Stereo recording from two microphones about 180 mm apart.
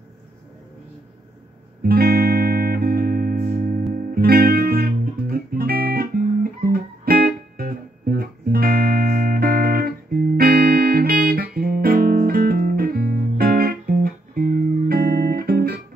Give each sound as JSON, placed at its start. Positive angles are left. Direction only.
{"t": 1.8, "sound": "music", "side_deg": -55}